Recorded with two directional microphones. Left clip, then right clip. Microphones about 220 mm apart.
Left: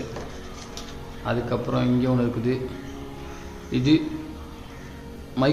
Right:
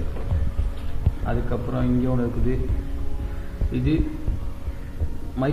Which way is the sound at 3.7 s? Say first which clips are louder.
Left 2 dB; 35° left (ahead or behind).